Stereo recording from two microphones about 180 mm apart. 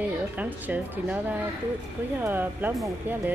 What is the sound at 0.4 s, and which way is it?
Speech, 10° right (ahead or behind).